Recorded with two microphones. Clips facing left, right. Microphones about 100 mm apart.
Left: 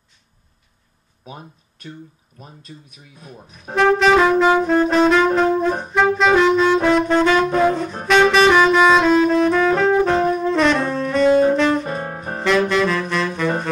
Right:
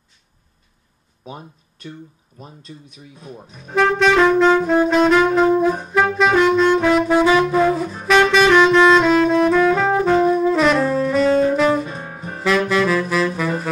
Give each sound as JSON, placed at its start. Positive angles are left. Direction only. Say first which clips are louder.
{"t": 2.3, "sound": "speech", "louder": "right 3 dB", "side_deg": -5}
{"t": 3.7, "sound": "saxophone", "louder": "left 1 dB", "side_deg": 0}
{"t": 8.1, "sound": "saxophone", "louder": "even", "side_deg": 0}
{"t": 11.5, "sound": "music", "louder": "right 1 dB", "side_deg": -5}
{"t": 11.8, "sound": "music", "louder": "left 3 dB", "side_deg": 55}
{"t": 12.4, "sound": "saxophone", "louder": "even", "side_deg": 0}